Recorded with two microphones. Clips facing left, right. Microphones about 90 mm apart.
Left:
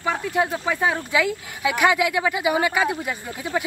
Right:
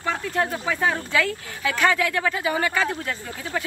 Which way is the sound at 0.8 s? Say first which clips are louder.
Left 1 dB; 15° left (ahead or behind).